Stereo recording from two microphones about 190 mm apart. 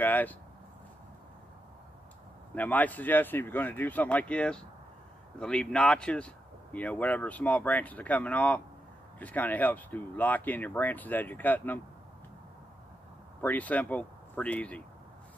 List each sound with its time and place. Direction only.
0.0 s speech: 10° left (ahead or behind)
2.5 s speech: 10° left (ahead or behind)
13.4 s speech: 10° left (ahead or behind)